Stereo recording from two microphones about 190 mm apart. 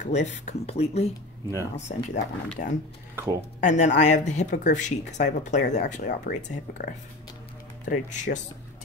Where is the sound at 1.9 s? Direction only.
45° left (ahead or behind).